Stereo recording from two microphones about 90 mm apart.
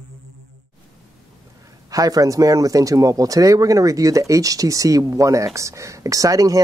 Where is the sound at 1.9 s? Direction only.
40° right (ahead or behind).